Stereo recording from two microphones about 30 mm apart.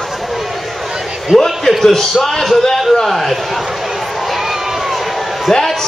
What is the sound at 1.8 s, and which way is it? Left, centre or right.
A man's voice, centre.